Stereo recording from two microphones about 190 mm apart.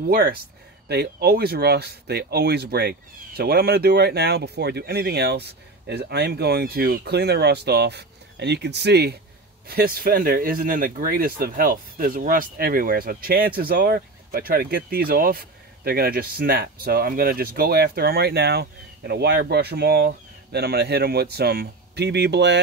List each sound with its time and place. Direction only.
0.1 s speech: 50° right (ahead or behind)